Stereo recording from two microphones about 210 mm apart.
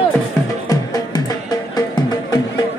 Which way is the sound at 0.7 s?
20° left (ahead or behind).